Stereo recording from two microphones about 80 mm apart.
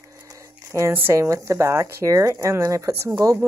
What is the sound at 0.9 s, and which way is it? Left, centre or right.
Speech, right.